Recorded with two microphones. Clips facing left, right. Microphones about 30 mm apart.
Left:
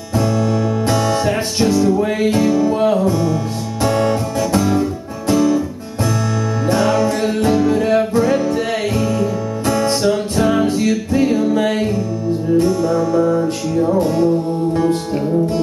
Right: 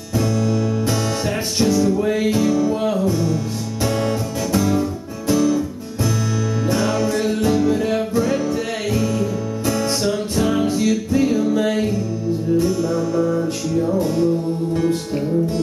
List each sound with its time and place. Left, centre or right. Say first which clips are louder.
0.2 s music: left 3 dB; left
1.8 s music: left 3 dB; centre
6.7 s music: left 5 dB; centre
8.1 s music: left 4 dB; left